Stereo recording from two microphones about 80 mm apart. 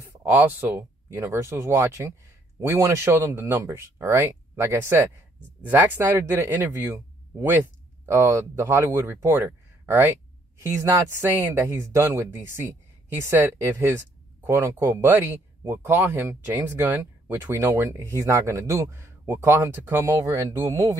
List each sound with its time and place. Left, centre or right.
0.2 s speech: right
10.6 s speech: right
11.1 s speech: right
17.9 s speech: right